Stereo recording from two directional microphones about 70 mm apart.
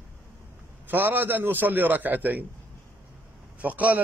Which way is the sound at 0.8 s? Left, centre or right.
Right.